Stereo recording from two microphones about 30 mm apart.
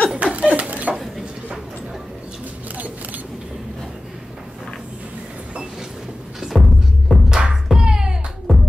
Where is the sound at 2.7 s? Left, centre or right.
Right.